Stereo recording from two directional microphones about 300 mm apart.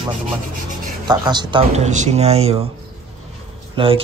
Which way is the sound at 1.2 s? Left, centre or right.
Centre.